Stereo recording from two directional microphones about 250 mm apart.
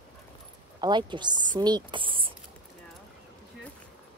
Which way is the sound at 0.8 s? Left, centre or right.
Centre.